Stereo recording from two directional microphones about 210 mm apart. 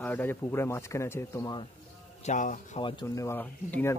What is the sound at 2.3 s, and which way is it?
Speech, 35° left (ahead or behind).